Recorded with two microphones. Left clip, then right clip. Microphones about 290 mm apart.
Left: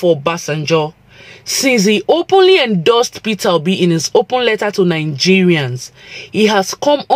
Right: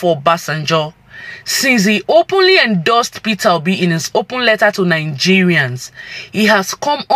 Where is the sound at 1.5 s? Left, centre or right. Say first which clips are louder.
Left 1 dB; centre.